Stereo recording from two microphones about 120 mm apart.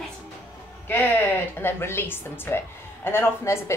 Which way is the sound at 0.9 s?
15° left (ahead or behind).